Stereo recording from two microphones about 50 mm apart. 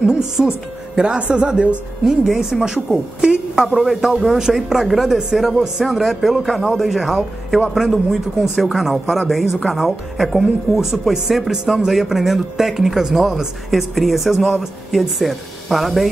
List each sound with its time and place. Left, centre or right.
0.0 s a woman's voice: centre
2.0 s a woman's voice: centre